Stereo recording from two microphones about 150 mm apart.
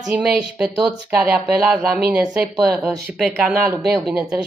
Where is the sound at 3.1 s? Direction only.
5° right (ahead or behind).